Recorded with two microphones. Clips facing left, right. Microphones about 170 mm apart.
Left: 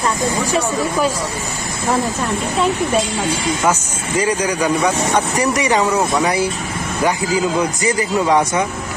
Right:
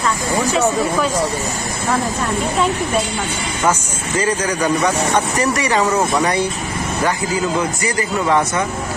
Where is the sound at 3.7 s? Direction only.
10° left (ahead or behind).